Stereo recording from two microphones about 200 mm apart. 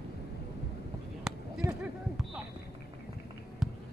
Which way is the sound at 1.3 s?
Centre (ahead or behind).